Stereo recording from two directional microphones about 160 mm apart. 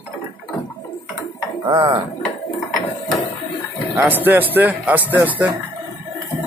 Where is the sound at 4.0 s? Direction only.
10° right (ahead or behind).